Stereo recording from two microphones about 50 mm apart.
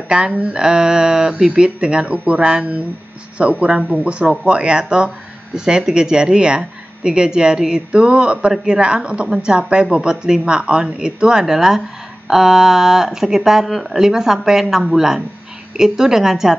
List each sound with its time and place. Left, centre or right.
0.1 s speech: centre